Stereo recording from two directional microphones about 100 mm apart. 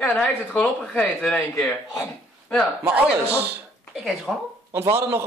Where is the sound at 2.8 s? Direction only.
15° right (ahead or behind).